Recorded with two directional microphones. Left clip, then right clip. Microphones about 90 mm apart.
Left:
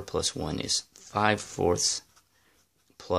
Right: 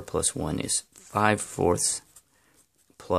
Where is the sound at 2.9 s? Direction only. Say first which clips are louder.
Even; 40° right (ahead or behind).